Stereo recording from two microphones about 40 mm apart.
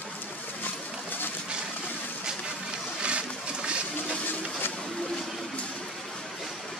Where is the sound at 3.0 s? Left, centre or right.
Right.